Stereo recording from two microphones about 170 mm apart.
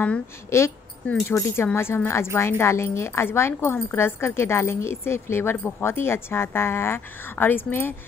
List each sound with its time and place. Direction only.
0.0 s a woman's voice: 10° left (ahead or behind)